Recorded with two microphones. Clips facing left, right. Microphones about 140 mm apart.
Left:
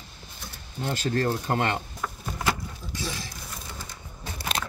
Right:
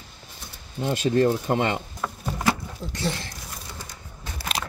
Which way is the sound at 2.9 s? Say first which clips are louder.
Right 5 dB; 65° right (ahead or behind).